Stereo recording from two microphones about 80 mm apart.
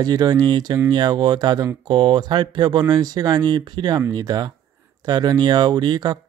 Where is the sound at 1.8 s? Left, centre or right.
Right.